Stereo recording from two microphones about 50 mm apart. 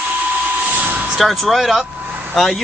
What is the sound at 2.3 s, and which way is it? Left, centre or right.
Speech, centre.